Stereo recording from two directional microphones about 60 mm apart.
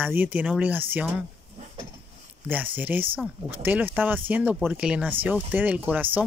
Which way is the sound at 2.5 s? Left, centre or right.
Right.